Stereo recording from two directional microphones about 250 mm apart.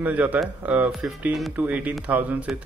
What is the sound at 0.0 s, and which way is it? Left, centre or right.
Speech, centre.